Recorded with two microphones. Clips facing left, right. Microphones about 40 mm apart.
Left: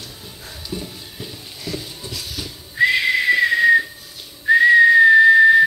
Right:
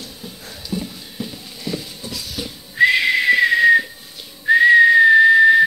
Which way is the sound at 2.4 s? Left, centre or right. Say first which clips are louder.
Right 5 dB; centre.